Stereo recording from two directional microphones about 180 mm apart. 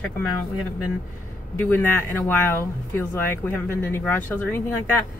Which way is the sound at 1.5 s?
10° left (ahead or behind).